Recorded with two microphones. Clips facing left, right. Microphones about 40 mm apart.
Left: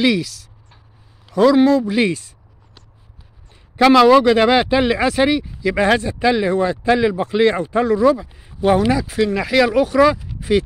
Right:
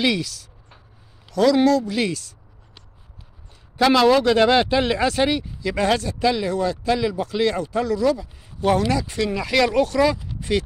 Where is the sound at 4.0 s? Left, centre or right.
Centre.